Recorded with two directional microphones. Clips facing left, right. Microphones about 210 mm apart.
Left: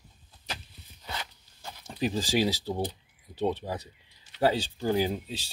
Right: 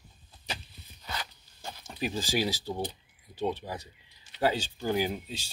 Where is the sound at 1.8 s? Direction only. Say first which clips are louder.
Left 4 dB; 35° left (ahead or behind).